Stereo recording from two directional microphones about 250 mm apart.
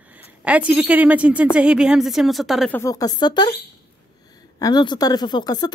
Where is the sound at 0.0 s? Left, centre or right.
Centre.